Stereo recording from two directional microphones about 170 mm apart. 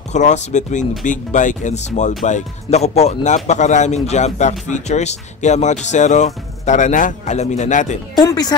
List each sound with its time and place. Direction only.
0.1 s speech: 45° left (ahead or behind)
8.2 s speech: 20° left (ahead or behind)